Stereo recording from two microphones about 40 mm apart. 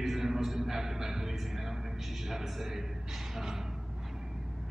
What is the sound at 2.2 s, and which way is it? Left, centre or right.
A man's voice, centre.